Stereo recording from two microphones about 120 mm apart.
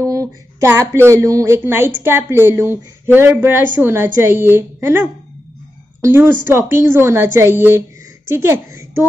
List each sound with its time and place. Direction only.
0.0 s speech: 25° right (ahead or behind)